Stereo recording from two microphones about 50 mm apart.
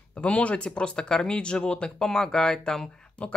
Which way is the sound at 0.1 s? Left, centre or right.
Left.